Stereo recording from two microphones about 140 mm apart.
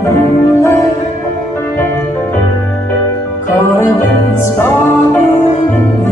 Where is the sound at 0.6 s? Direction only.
20° left (ahead or behind).